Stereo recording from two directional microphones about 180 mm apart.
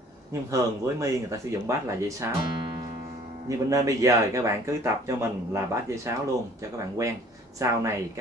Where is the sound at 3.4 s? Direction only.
20° right (ahead or behind).